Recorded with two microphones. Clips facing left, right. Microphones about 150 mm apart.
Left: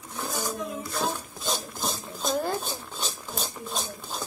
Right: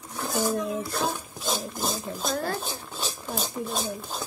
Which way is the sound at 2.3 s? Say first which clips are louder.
Left 3 dB; 15° left (ahead or behind).